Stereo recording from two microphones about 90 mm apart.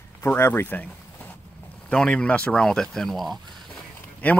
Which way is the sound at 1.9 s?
10° left (ahead or behind).